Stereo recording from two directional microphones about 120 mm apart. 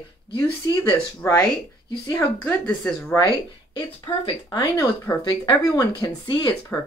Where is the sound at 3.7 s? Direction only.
40° left (ahead or behind).